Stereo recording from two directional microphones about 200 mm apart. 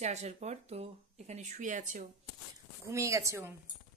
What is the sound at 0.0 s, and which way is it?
Speech, 35° right (ahead or behind).